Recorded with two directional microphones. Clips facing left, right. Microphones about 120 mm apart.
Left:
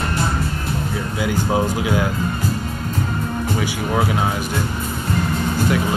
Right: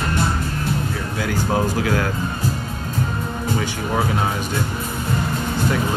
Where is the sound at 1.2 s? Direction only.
15° left (ahead or behind).